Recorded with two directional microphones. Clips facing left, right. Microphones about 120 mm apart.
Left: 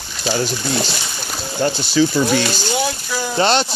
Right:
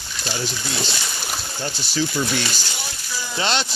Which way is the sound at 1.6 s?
65° left (ahead or behind).